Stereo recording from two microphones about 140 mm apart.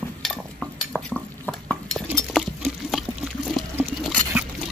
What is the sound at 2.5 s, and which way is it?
Water, 5° right (ahead or behind).